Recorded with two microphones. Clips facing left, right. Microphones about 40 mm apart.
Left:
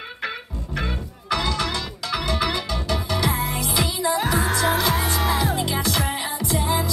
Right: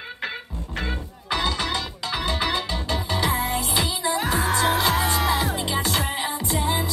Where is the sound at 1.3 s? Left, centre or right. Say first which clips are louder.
Left 1 dB; right.